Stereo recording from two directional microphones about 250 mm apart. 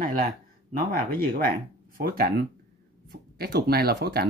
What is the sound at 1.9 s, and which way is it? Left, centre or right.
Speech, right.